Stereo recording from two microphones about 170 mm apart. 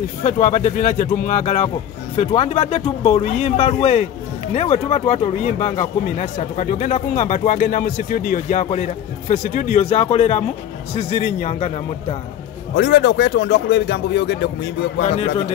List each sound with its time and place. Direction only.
0.2 s speech: 45° left (ahead or behind)
12.7 s speech: 85° left
15.0 s speech: 40° left (ahead or behind)